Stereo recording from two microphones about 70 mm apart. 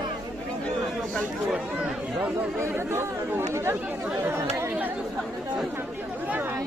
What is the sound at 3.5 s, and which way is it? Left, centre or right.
Chatter, right.